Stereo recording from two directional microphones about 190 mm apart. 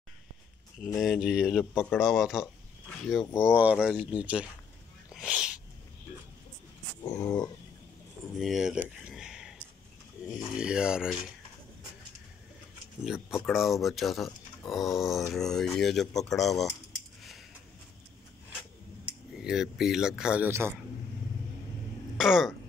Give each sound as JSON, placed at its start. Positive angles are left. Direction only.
{"t": 0.9, "sound": "speech", "side_deg": 0}
{"t": 5.1, "sound": "sneeze", "side_deg": -5}
{"t": 7.2, "sound": "speech", "side_deg": 20}
{"t": 8.4, "sound": "speech", "side_deg": 0}
{"t": 13.0, "sound": "speech", "side_deg": -5}
{"t": 19.3, "sound": "speech", "side_deg": -5}
{"t": 22.1, "sound": "speech", "side_deg": 0}